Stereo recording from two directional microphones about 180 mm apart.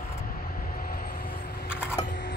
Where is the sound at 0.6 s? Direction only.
55° left (ahead or behind).